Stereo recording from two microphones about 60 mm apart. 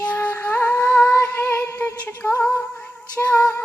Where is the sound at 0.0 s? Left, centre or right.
Left.